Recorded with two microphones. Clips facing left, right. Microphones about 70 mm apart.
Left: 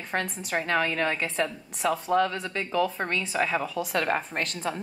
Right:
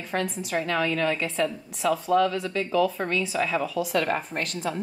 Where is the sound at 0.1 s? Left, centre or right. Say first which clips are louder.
Right 2 dB; left.